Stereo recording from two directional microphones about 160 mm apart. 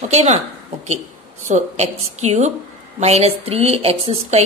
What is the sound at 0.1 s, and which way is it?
A woman's voice, 45° right (ahead or behind).